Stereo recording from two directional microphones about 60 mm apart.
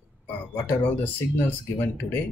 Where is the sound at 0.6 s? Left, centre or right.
Left.